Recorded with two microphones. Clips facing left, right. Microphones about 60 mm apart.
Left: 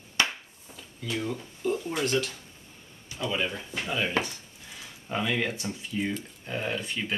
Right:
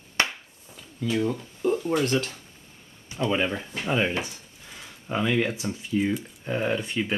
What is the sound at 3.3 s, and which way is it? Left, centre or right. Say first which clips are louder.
Speech: right 4 dB; right.